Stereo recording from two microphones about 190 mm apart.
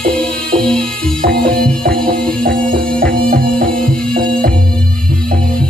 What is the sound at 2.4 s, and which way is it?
Music, 50° right (ahead or behind).